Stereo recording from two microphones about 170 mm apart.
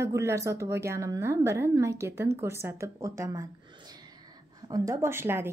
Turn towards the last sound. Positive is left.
turn(degrees=-15)  # may be behind; listen again after turning